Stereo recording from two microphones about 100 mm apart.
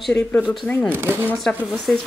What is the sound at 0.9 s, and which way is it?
Speech, 25° right (ahead or behind).